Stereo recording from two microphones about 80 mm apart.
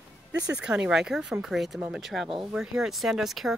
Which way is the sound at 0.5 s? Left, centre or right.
Centre.